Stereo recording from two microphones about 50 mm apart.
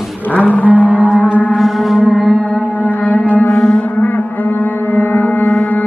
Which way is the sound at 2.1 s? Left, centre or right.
Centre.